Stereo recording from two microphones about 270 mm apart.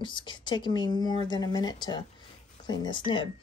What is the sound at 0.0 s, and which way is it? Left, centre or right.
Speech, centre.